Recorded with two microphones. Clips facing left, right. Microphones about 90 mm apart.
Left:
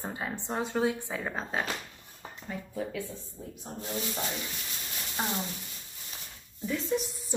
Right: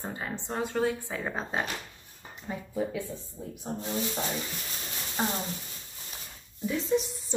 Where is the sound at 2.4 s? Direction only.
15° right (ahead or behind).